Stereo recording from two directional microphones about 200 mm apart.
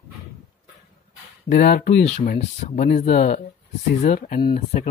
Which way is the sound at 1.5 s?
50° left (ahead or behind).